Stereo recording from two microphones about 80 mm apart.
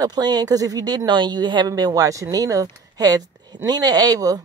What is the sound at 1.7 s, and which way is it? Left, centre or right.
Speech, right.